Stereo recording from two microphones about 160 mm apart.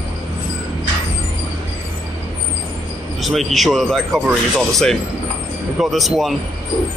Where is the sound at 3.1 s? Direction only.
Centre (ahead or behind).